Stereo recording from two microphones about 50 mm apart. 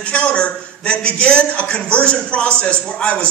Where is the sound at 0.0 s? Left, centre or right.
Left.